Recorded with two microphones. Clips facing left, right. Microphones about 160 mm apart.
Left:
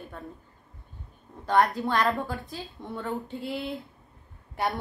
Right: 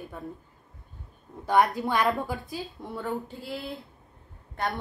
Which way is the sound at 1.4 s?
10° right (ahead or behind).